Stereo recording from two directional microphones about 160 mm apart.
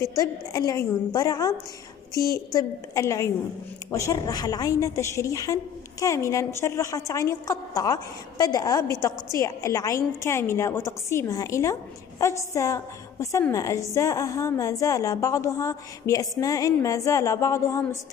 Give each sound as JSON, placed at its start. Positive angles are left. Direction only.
{"t": 0.0, "sound": "a woman's voice", "side_deg": 20}